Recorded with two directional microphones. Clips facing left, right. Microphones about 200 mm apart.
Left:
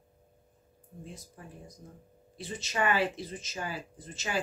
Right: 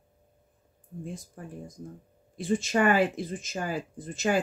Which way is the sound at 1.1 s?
50° right (ahead or behind).